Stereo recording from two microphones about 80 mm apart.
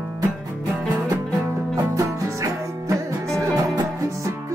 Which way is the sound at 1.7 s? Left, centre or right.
Right.